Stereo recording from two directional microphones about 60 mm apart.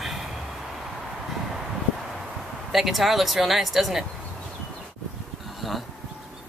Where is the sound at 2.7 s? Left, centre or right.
Centre.